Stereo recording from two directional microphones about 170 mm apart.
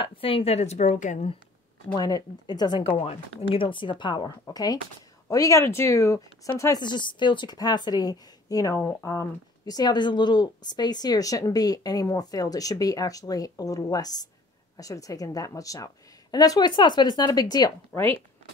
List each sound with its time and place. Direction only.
0.0 s a woman's voice: 30° left (ahead or behind); by 1.3 s 45° left (ahead or behind)
2.0 s speech: 20° left (ahead or behind)